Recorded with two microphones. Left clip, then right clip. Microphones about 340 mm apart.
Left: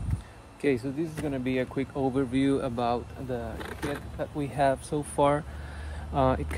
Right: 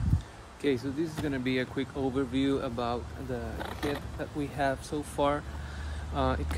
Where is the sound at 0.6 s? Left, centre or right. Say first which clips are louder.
Left 2 dB; centre.